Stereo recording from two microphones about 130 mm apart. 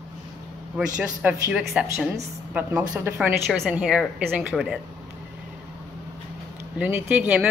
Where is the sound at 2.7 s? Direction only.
20° right (ahead or behind).